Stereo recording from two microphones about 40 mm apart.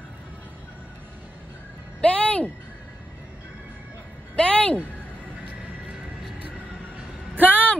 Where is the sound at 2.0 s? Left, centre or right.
Left.